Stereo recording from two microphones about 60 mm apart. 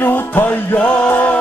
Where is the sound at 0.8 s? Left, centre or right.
Centre.